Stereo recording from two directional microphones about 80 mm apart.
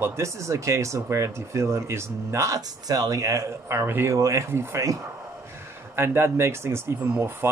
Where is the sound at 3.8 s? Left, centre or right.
Right.